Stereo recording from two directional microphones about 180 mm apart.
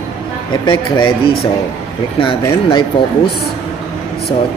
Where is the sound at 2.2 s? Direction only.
30° left (ahead or behind).